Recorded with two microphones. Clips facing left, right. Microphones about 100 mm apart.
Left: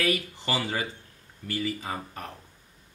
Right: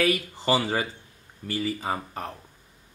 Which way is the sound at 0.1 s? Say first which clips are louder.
Right 5 dB; 35° right (ahead or behind).